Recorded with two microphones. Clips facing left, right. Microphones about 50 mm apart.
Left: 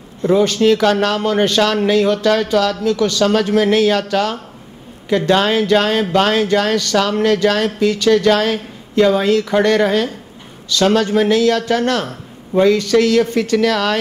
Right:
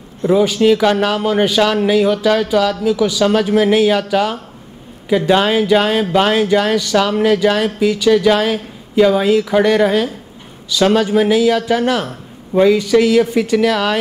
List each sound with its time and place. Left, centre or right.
0.2 s speech: centre